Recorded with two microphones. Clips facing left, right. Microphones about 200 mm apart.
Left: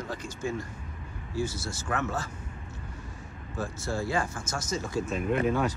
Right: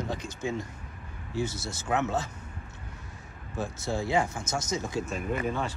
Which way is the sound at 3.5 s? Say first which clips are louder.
Right 1 dB; 20° right (ahead or behind).